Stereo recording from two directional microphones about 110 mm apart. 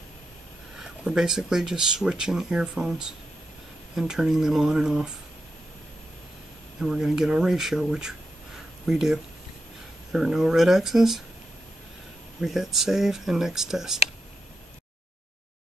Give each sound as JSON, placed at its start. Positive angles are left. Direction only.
{"t": 0.7, "sound": "speech", "side_deg": -5}
{"t": 6.8, "sound": "speech", "side_deg": -5}
{"t": 12.4, "sound": "speech", "side_deg": 0}